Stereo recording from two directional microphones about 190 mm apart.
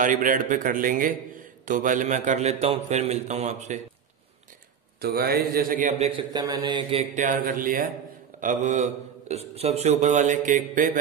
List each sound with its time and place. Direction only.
0.0 s a man's voice: 45° right (ahead or behind)
5.0 s a man's voice: 55° right (ahead or behind)